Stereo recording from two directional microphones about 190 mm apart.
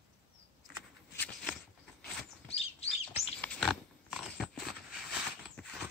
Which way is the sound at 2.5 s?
30° left (ahead or behind).